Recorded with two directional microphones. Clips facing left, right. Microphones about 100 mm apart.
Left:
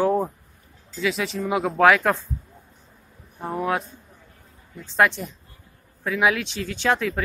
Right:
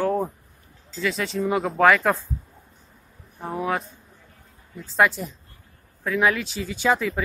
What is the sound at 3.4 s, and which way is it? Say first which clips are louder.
Speech: left 1 dB; centre (ahead or behind).